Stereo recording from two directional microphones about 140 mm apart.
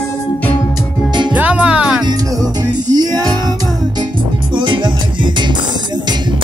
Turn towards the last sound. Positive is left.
turn(degrees=-35)  # may be behind; listen again after turning